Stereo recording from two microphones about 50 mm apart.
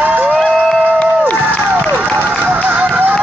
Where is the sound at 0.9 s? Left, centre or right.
Left.